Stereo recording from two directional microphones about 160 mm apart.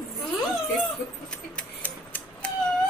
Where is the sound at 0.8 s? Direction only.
5° left (ahead or behind).